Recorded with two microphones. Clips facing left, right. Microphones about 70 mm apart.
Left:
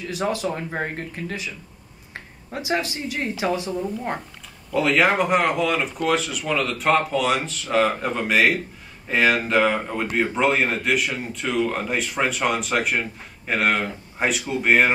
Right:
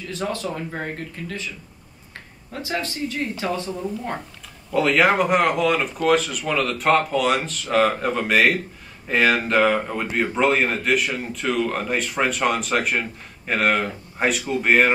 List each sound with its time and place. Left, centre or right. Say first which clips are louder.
0.1 s speech: left 2 dB; centre
2.5 s speech: left 2 dB; centre
4.7 s a man's voice: right 1 dB; centre